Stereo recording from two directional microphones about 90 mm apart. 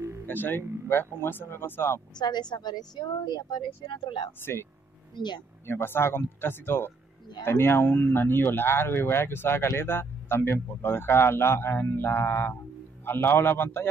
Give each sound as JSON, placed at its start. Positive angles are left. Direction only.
{"t": 0.3, "sound": "speech", "side_deg": 20}
{"t": 2.1, "sound": "a woman's voice", "side_deg": 50}
{"t": 5.7, "sound": "speech", "side_deg": 25}